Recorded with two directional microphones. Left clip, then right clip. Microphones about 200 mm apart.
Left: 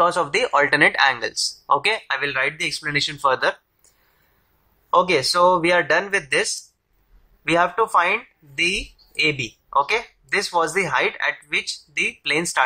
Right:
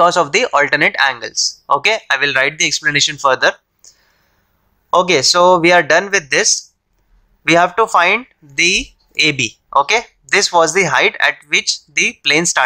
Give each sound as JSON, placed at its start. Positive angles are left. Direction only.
{"t": 0.0, "sound": "speech", "side_deg": -35}
{"t": 4.9, "sound": "speech", "side_deg": -35}